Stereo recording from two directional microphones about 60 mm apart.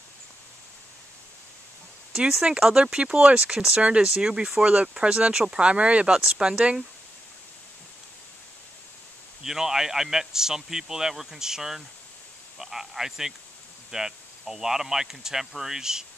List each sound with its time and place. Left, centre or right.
2.1 s speech: centre
9.4 s speech: centre
12.5 s cricket: centre
13.9 s speech: centre